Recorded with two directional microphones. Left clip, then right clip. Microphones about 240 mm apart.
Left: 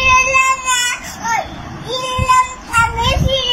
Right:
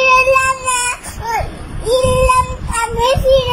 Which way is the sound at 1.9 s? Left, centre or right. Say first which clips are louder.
Right 4 dB; centre.